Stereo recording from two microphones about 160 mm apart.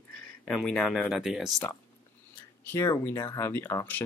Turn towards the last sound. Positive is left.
turn(degrees=15)  # may be behind; listen again after turning